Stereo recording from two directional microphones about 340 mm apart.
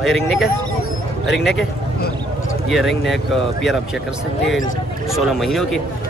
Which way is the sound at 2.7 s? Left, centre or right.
Centre.